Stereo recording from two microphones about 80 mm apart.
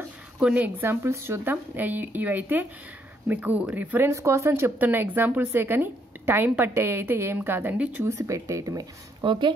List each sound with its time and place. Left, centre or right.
0.4 s a woman's voice: centre
0.7 s speech: right
4.1 s speech: right; by 8.0 s centre
8.0 s speech: right
9.2 s speech: right